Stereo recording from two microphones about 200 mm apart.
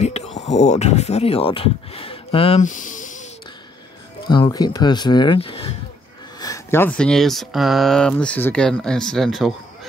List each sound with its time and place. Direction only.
0.0 s speech: 35° left (ahead or behind)
4.3 s speech: 20° left (ahead or behind)
6.4 s speech: 15° left (ahead or behind)